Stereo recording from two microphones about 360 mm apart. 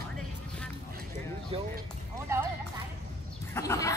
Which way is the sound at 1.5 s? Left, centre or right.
Centre.